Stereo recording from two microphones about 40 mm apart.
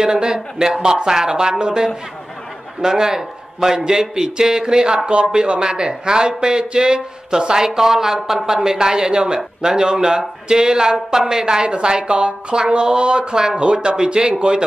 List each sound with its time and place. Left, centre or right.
0.0 s a man's voice: centre